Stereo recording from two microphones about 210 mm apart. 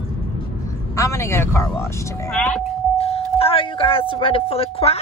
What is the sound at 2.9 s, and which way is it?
Speech, 30° left (ahead or behind).